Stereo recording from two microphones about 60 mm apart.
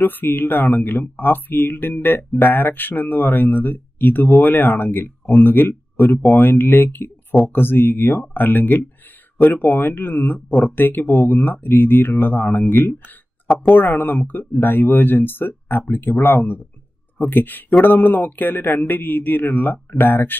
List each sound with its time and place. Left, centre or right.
0.0 s speech: left